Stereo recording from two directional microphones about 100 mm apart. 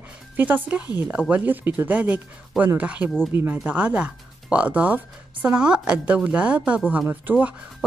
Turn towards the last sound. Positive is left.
turn(degrees=-15)  # may be behind; listen again after turning